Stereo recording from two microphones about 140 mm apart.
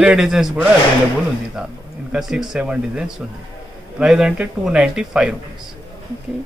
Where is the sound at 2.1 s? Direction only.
5° right (ahead or behind).